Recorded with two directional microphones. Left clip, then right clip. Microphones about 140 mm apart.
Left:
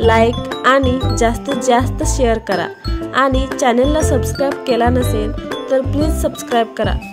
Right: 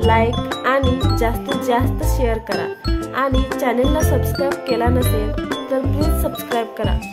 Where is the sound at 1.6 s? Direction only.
40° left (ahead or behind).